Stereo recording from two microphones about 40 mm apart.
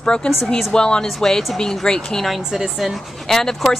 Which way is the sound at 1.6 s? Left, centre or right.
Centre.